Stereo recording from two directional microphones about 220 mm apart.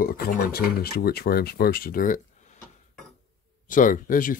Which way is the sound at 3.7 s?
35° left (ahead or behind).